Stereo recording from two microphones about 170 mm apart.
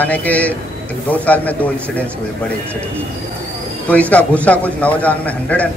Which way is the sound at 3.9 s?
10° left (ahead or behind).